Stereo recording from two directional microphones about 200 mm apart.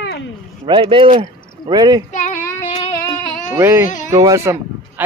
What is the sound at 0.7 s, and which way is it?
Speech, 25° right (ahead or behind).